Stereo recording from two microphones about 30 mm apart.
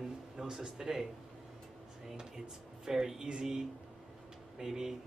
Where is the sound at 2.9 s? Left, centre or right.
Centre.